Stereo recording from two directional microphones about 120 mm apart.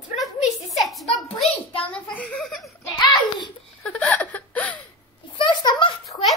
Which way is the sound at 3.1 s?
40° left (ahead or behind).